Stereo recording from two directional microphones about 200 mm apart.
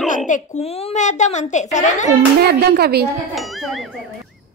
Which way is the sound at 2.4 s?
50° right (ahead or behind).